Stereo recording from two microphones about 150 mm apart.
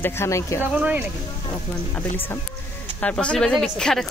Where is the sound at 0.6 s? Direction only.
10° right (ahead or behind).